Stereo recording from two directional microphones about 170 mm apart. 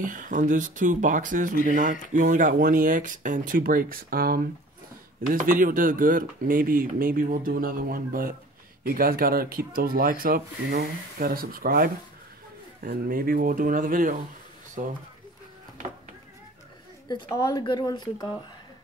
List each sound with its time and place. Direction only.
0.0 s speech: 50° right (ahead or behind)
17.1 s speech: 25° left (ahead or behind)